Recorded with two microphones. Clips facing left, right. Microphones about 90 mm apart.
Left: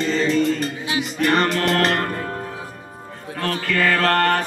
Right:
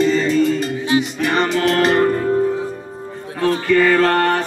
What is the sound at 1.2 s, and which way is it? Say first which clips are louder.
Music: right 2 dB; centre (ahead or behind).